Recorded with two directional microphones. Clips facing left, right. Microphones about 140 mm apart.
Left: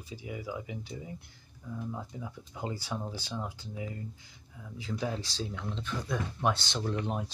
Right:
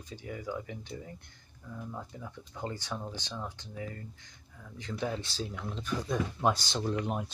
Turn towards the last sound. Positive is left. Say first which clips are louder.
# right 1 dB
turn(degrees=-10)  # may be behind; listen again after turning